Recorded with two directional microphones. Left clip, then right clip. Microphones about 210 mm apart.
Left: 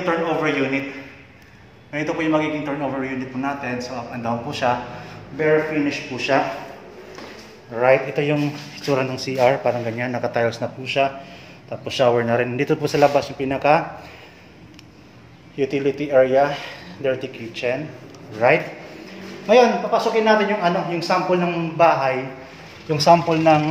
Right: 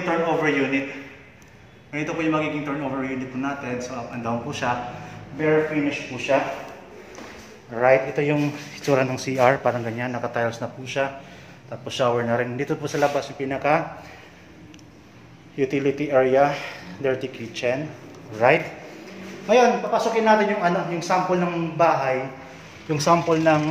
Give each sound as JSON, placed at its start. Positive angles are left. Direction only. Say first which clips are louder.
{"t": 0.4, "sound": "a man's voice", "louder": "left 1 dB", "side_deg": 5}
{"t": 1.9, "sound": "a man's voice", "louder": "left 3 dB", "side_deg": 10}
{"t": 5.9, "sound": "a man's voice", "louder": "left 2 dB", "side_deg": 15}
{"t": 7.7, "sound": "speech", "louder": "left 1 dB", "side_deg": 0}
{"t": 8.8, "sound": "speech", "louder": "even", "side_deg": -20}
{"t": 9.8, "sound": "a man's voice", "louder": "left 4 dB", "side_deg": 0}
{"t": 15.5, "sound": "speech", "louder": "left 1 dB", "side_deg": -15}
{"t": 18.4, "sound": "a man's voice", "louder": "left 1 dB", "side_deg": -10}
{"t": 19.4, "sound": "a man's voice", "louder": "left 3 dB", "side_deg": 15}